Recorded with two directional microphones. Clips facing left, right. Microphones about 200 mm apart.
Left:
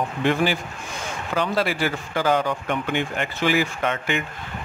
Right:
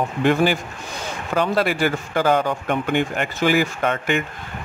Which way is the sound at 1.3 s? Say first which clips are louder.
Right 3 dB; 50° right (ahead or behind).